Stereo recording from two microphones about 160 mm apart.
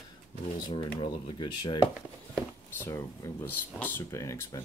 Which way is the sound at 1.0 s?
30° left (ahead or behind).